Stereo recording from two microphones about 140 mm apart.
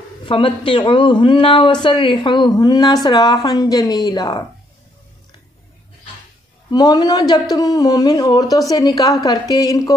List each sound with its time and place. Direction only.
0.2 s speech: 40° left (ahead or behind)
6.7 s speech: 25° left (ahead or behind)